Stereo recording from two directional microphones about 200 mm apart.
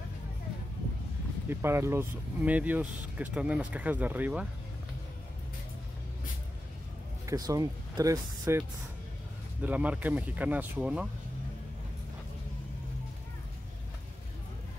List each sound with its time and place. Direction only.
1.5 s speech: 10° right (ahead or behind)
7.2 s speech: 15° right (ahead or behind)
9.6 s speech: 5° right (ahead or behind)